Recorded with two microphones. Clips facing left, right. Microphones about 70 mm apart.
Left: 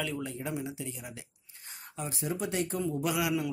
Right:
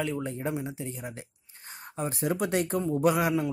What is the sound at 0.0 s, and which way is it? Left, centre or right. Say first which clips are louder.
Speech: right 4 dB; right.